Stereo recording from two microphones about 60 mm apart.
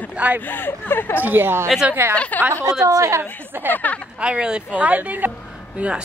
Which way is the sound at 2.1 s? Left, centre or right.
Left.